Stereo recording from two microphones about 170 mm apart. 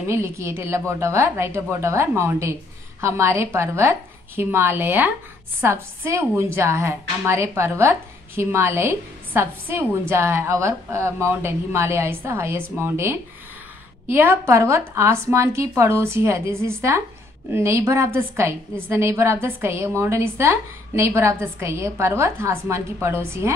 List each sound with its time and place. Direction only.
0.1 s a woman's voice: 15° right (ahead or behind)